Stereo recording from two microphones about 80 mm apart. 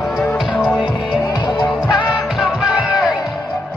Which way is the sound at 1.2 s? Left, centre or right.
Left.